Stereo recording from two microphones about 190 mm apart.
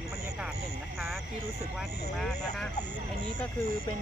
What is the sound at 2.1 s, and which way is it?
Speech, 5° left (ahead or behind).